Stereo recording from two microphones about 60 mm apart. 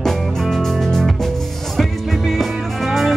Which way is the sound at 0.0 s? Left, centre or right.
Centre.